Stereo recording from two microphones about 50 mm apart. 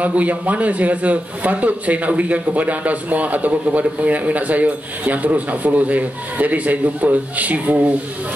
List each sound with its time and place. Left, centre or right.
0.0 s a man's voice: right